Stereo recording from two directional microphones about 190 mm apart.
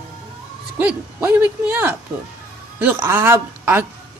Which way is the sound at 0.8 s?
10° right (ahead or behind).